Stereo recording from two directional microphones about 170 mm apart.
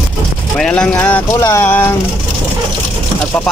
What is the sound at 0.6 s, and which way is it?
Speech, 5° left (ahead or behind).